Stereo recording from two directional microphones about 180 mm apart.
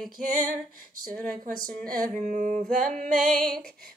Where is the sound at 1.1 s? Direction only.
5° left (ahead or behind).